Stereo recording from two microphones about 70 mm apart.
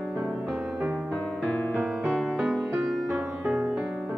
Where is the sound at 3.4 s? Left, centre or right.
Centre.